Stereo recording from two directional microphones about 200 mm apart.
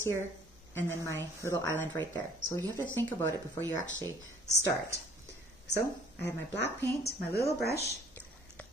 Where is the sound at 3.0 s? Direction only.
10° left (ahead or behind).